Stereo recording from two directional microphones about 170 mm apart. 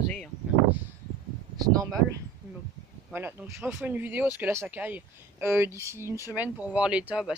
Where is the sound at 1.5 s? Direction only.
20° right (ahead or behind).